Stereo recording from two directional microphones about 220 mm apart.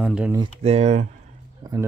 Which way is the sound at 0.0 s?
5° right (ahead or behind).